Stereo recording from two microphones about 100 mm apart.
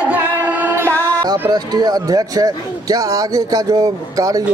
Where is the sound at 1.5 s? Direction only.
45° right (ahead or behind).